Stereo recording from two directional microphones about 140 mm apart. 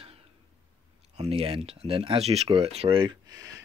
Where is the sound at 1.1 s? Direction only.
45° right (ahead or behind).